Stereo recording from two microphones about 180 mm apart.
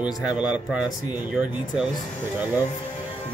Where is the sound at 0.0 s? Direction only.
5° right (ahead or behind).